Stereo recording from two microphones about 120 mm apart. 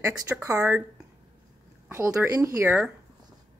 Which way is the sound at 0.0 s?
25° right (ahead or behind).